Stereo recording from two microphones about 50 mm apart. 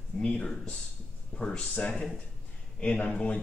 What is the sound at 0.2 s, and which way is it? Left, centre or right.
Speech, centre.